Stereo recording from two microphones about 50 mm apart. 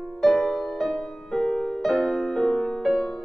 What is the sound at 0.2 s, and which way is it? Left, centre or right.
Music, centre.